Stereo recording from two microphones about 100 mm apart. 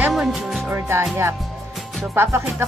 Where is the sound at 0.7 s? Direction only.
25° right (ahead or behind).